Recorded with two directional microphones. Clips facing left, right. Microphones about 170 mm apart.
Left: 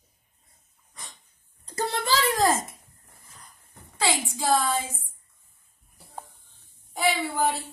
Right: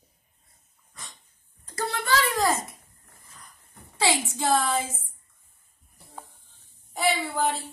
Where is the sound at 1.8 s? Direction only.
30° left (ahead or behind).